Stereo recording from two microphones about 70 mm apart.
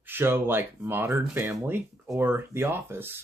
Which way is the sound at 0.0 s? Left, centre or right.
Right.